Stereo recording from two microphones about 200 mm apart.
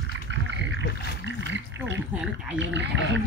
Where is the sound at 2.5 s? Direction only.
65° right (ahead or behind).